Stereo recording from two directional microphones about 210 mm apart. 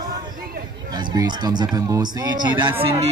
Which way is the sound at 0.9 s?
20° right (ahead or behind).